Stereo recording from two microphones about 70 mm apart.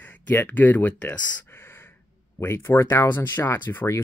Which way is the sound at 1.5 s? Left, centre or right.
Left.